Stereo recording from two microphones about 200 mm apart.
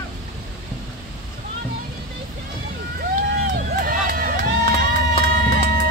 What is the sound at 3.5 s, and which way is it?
Run, 45° right (ahead or behind).